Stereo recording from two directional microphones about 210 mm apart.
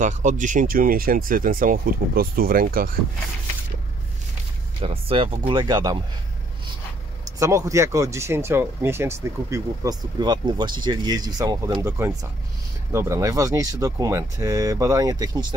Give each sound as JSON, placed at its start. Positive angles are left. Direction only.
{"t": 0.0, "sound": "speech", "side_deg": -35}
{"t": 4.7, "sound": "speech", "side_deg": -25}
{"t": 7.3, "sound": "speech", "side_deg": -15}